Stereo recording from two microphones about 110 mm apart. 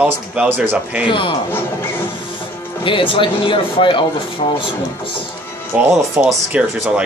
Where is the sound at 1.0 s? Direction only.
50° left (ahead or behind).